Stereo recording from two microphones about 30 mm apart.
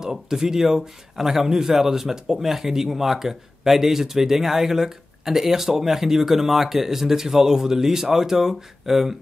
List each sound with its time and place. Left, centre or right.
0.0 s speech: centre